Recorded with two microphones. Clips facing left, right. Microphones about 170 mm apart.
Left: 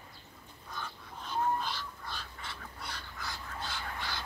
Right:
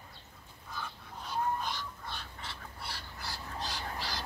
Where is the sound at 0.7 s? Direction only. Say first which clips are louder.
Even; 15° right (ahead or behind); by 4.2 s 35° right (ahead or behind).